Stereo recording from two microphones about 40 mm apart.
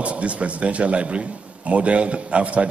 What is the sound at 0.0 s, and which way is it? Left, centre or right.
Speech, right.